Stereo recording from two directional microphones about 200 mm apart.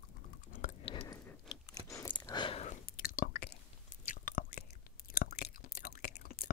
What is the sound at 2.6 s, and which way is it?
Chewing, 45° left (ahead or behind).